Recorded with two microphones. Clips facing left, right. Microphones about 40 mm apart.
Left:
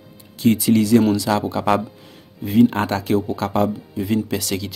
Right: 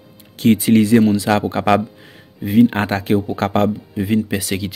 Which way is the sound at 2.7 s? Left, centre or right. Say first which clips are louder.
Right 2 dB; right.